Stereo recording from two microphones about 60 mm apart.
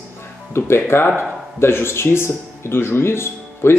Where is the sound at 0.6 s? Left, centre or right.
Left.